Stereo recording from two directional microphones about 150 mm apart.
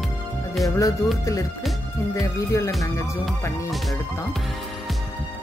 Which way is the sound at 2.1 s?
20° left (ahead or behind).